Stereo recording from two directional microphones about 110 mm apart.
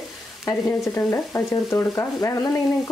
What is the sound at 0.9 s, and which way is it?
Frying, 25° left (ahead or behind).